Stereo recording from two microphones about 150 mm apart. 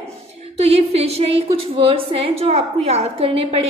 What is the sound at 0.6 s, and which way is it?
A woman's voice, 45° right (ahead or behind).